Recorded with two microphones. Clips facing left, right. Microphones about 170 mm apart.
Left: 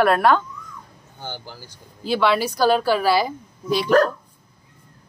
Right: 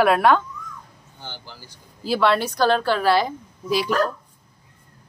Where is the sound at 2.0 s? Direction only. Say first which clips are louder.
Even; centre (ahead or behind).